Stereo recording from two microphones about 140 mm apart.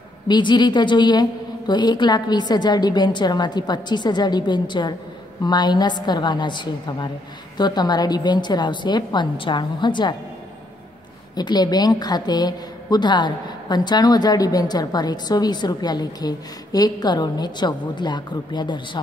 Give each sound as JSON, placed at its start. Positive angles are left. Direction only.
{"t": 0.3, "sound": "a woman's voice", "side_deg": 30}
{"t": 11.3, "sound": "a woman's voice", "side_deg": 30}